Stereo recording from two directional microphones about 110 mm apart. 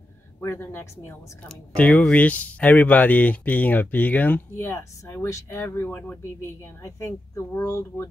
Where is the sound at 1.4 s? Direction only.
10° left (ahead or behind).